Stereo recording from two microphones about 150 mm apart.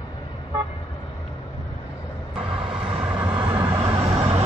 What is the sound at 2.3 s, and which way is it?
Vehicle, 5° right (ahead or behind).